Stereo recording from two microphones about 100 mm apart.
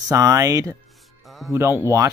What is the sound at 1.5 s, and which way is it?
Speech, 25° right (ahead or behind).